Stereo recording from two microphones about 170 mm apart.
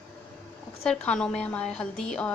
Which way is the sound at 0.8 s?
5° left (ahead or behind).